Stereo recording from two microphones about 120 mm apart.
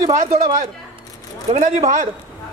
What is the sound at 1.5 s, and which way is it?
Speech, 85° right.